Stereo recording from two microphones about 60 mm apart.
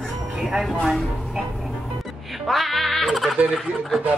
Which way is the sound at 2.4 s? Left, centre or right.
Centre.